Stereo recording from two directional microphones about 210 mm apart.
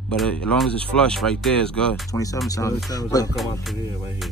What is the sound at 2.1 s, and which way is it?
Speech, 15° left (ahead or behind).